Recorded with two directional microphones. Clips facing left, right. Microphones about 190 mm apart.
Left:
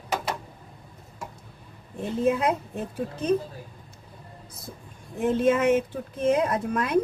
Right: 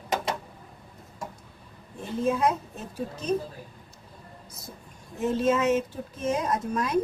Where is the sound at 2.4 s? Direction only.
60° left (ahead or behind).